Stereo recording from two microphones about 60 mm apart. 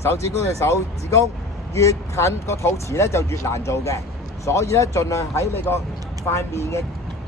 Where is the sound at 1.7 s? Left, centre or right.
Left.